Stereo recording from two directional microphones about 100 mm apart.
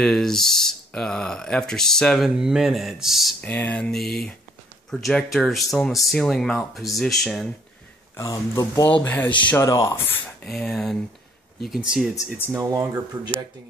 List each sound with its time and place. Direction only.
0.0 s speech: 5° left (ahead or behind)
3.3 s speech: 20° left (ahead or behind)
8.2 s speech: 35° left (ahead or behind)
9.0 s speech: 20° left (ahead or behind)
9.6 s speech: 35° left (ahead or behind)
10.4 s speech: 5° left (ahead or behind)
12.4 s speech: 25° right (ahead or behind)